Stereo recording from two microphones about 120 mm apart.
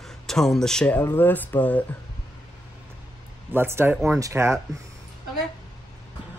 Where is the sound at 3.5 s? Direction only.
20° right (ahead or behind).